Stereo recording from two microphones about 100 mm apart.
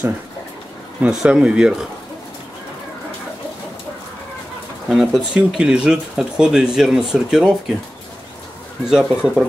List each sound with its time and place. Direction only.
1.0 s speech: 10° right (ahead or behind)
4.8 s speech: 5° right (ahead or behind)
8.8 s speech: 5° right (ahead or behind)